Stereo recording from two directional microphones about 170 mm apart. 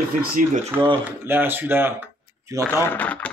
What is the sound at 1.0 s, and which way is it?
Speech, 10° right (ahead or behind).